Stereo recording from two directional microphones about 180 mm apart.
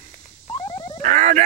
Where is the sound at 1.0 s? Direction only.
40° right (ahead or behind).